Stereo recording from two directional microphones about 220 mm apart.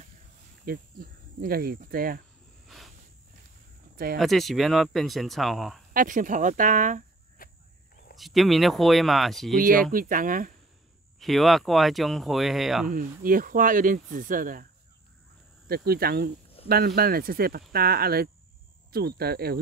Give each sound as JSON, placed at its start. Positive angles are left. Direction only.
{"t": 0.7, "sound": "speech", "side_deg": -40}
{"t": 2.7, "sound": "insect", "side_deg": 0}
{"t": 3.9, "sound": "a sound", "side_deg": -40}
{"t": 4.2, "sound": "speech", "side_deg": 0}
{"t": 5.9, "sound": "speech", "side_deg": -35}
{"t": 7.4, "sound": "cricket", "side_deg": 40}
{"t": 8.2, "sound": "speech", "side_deg": 0}
{"t": 9.6, "sound": "speech", "side_deg": -40}
{"t": 11.1, "sound": "speech", "side_deg": 0}
{"t": 12.8, "sound": "speech", "side_deg": -40}
{"t": 15.7, "sound": "speech", "side_deg": -45}